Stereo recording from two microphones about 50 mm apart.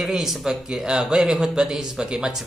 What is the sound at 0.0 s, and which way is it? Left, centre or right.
Speech, centre.